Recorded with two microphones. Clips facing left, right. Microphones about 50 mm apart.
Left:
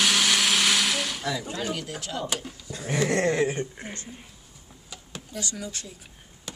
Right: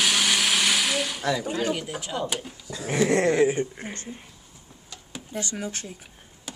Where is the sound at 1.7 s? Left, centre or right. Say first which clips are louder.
Right 3 dB; centre.